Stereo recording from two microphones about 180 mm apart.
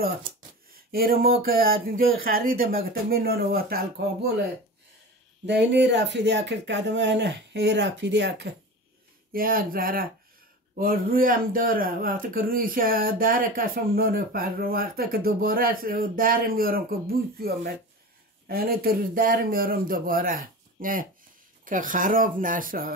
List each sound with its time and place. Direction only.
0.7 s speech: 55° right (ahead or behind)
5.5 s speech: 70° right (ahead or behind)
9.3 s speech: 55° right (ahead or behind)
18.5 s speech: 55° right (ahead or behind)